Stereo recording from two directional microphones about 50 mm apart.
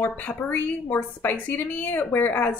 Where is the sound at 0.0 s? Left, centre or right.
Left.